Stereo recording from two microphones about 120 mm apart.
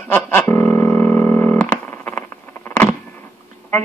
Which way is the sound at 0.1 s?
15° left (ahead or behind).